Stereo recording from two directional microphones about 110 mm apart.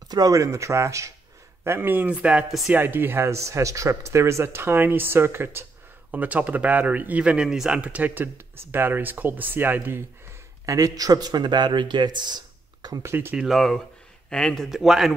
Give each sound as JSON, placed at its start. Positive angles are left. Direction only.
{"t": 0.1, "sound": "speech", "side_deg": -30}
{"t": 13.1, "sound": "speech", "side_deg": -20}
{"t": 13.4, "sound": "a man's voice", "side_deg": 0}